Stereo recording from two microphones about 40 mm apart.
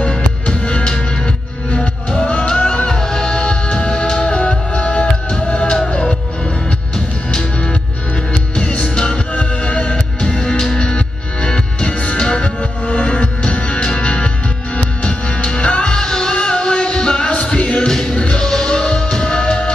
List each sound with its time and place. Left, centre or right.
1.8 s music: centre
2.5 s music: left
2.9 s music: centre
8.3 s music: left
9.9 s music: left
12.8 s music: left
16.0 s music: centre
17.5 s music: left
17.7 s music: centre
18.1 s music: left
18.4 s music: centre